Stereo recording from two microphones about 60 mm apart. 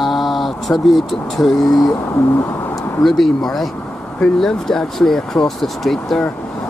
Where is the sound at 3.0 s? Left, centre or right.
Centre.